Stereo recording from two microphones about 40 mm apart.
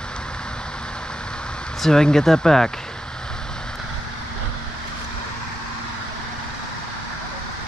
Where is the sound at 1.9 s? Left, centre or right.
Centre.